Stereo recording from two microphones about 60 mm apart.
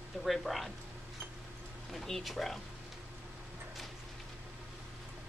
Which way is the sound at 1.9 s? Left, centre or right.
Centre.